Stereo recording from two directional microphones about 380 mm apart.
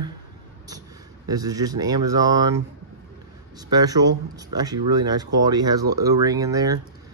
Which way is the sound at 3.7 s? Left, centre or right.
Centre.